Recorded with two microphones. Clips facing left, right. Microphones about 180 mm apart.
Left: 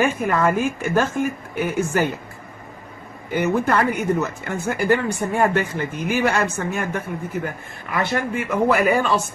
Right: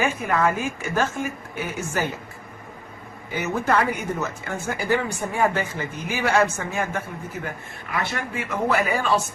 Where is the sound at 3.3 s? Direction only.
55° left (ahead or behind).